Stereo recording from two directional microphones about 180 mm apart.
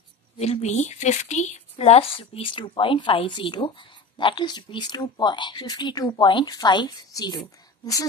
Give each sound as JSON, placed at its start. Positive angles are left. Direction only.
{"t": 0.4, "sound": "speech", "side_deg": 40}